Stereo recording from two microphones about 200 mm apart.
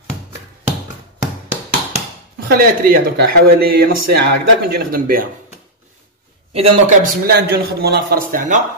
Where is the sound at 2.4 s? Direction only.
45° right (ahead or behind).